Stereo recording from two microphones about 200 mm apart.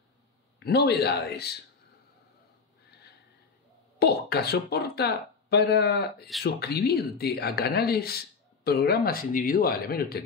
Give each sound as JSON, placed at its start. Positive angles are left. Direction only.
{"t": 0.6, "sound": "a man's voice", "side_deg": 55}
{"t": 2.9, "sound": "a sound", "side_deg": 55}
{"t": 4.0, "sound": "speech", "side_deg": 55}